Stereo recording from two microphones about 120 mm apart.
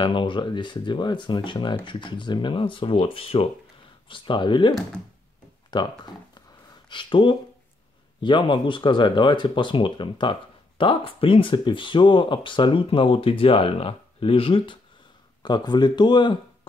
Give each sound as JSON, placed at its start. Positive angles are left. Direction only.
{"t": 0.0, "sound": "speech", "side_deg": 45}
{"t": 15.4, "sound": "speech", "side_deg": 35}